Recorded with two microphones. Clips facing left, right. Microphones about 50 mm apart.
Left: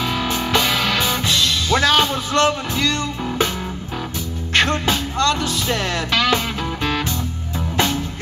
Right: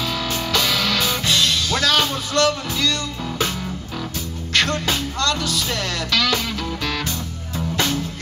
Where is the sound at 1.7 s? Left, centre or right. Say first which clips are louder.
Left 7 dB; left.